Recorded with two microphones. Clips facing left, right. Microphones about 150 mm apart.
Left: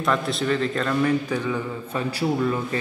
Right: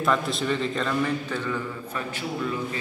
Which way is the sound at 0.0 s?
Centre (ahead or behind).